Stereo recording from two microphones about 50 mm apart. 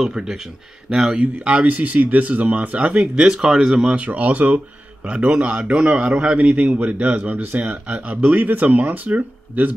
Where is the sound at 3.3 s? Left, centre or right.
Centre.